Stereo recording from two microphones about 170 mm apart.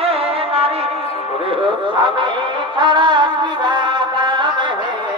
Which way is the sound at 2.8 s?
25° right (ahead or behind).